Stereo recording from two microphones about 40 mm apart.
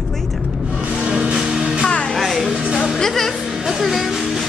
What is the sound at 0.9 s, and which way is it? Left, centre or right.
Music, centre.